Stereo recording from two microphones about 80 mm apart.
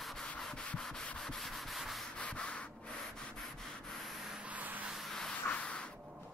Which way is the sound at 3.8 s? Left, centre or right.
Centre.